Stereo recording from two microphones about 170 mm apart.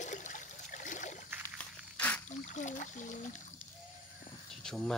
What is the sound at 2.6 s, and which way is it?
Speech, 45° left (ahead or behind).